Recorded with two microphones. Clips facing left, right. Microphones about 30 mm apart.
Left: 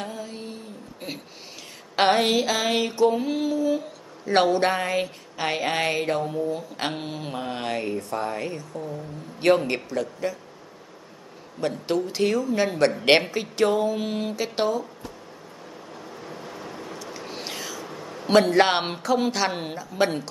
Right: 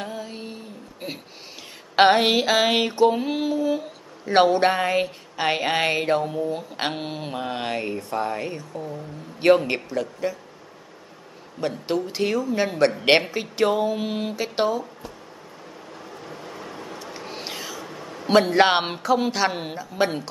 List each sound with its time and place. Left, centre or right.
0.0 s a sound: centre
2.2 s mantra: right
9.4 s a woman's voice: centre
11.6 s a woman's voice: centre
13.9 s mantra: centre
16.2 s vehicle: centre
17.2 s a sound: centre
19.8 s a woman's voice: centre